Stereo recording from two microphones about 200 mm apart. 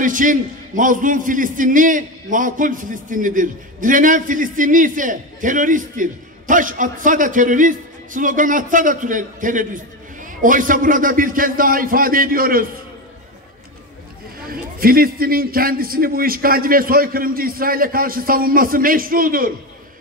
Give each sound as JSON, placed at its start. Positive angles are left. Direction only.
{"t": 0.0, "sound": "a man's voice", "side_deg": -40}
{"t": 14.4, "sound": "a man's voice", "side_deg": -45}